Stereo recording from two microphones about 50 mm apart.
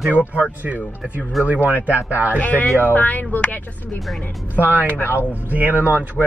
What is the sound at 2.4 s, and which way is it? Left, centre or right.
Speech, left.